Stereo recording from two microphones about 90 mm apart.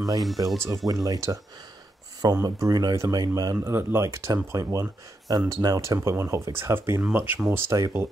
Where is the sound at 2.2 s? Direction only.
45° right (ahead or behind).